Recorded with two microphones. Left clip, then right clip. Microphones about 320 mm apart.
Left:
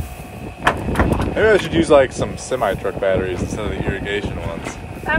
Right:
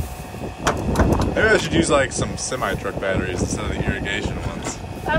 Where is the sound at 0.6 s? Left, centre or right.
Right.